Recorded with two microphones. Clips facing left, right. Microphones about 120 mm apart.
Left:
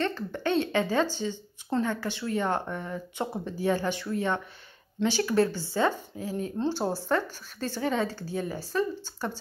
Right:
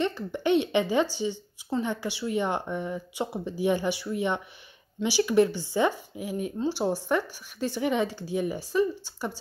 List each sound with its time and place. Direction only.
0.0 s a woman's voice: 15° right (ahead or behind)